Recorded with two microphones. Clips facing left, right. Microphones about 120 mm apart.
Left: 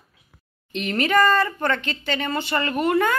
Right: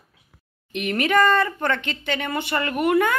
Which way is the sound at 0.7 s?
15° right (ahead or behind).